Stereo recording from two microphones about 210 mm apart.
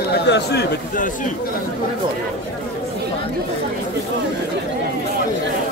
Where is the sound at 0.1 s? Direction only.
50° left (ahead or behind).